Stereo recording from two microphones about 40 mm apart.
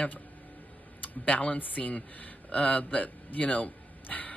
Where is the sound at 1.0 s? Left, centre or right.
Left.